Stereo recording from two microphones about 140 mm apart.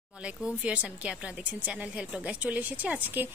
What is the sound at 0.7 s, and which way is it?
A woman's voice, 5° right (ahead or behind).